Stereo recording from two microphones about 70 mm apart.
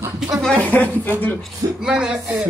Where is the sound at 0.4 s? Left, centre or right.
Centre.